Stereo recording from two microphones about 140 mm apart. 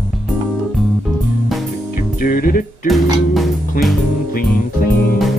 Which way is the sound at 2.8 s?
Centre (ahead or behind).